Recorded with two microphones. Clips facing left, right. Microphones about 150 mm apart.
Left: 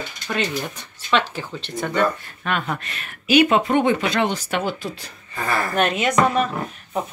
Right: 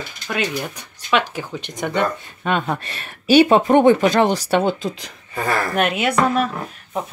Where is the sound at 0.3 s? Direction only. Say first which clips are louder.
Right 1 dB; 5° right (ahead or behind).